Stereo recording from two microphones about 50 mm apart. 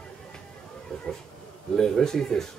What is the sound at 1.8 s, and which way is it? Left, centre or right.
Speech, centre.